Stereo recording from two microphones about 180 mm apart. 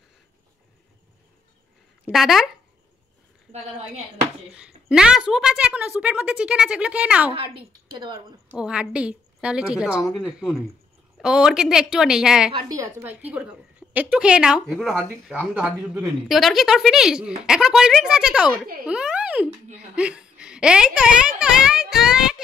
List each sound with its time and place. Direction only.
2.0 s a woman's voice: centre (ahead or behind)
3.5 s a woman's voice: 35° right (ahead or behind)
4.6 s a woman's voice: 5° right (ahead or behind)
7.9 s speech: 25° right (ahead or behind)
8.5 s a woman's voice: 5° right (ahead or behind)
12.5 s a woman's voice: 20° right (ahead or behind); by 22.4 s 5° right (ahead or behind)